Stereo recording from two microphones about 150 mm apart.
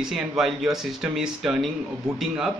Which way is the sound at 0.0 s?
Centre (ahead or behind).